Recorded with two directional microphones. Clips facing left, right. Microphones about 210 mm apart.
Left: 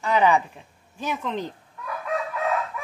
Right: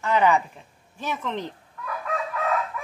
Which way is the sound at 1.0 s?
Centre (ahead or behind).